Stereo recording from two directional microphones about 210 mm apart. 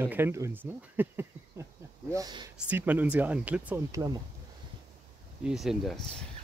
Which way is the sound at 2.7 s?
10° right (ahead or behind).